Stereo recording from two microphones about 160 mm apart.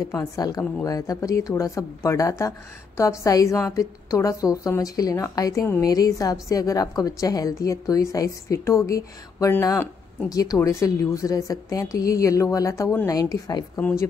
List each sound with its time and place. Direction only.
0.0 s a woman's voice: 20° left (ahead or behind)
13.7 s speech: 10° left (ahead or behind)